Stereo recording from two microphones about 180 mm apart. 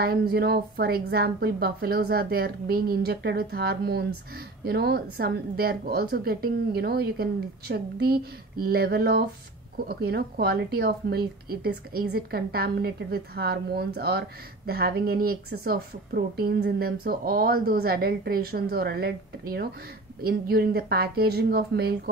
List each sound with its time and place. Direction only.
0.0 s a woman's voice: 55° right (ahead or behind)